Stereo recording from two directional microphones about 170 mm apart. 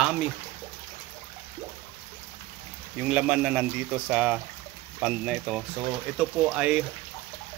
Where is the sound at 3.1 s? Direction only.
5° right (ahead or behind).